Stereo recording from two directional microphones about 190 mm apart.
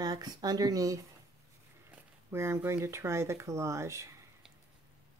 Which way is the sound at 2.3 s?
15° right (ahead or behind).